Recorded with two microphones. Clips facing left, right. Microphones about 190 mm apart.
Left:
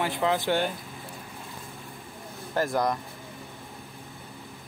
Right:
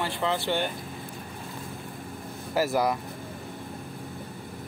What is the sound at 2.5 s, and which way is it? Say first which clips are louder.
Speech: right 1 dB; 5° right (ahead or behind).